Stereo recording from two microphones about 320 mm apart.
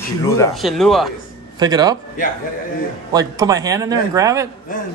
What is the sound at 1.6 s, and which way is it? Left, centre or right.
Speech, centre.